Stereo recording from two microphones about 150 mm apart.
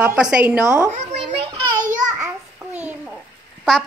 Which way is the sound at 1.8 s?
60° right (ahead or behind).